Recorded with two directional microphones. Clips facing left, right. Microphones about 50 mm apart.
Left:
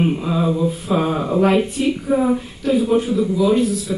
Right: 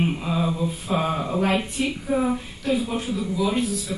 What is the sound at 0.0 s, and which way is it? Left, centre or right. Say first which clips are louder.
A man's voice: left 5 dB; centre.